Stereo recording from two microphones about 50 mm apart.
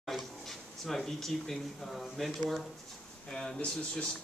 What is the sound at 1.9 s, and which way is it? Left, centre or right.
Speech, centre.